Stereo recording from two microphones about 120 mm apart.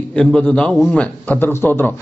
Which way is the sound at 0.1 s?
5° left (ahead or behind).